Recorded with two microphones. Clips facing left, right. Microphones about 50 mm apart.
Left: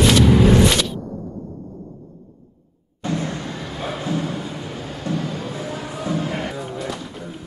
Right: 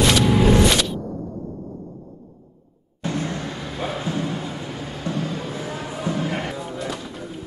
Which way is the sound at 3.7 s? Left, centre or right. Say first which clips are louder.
Right 1 dB; centre.